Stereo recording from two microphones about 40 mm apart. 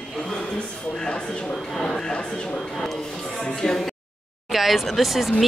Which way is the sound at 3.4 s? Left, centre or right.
Centre.